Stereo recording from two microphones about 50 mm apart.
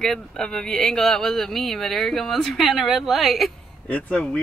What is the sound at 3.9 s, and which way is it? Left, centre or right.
Speech, left.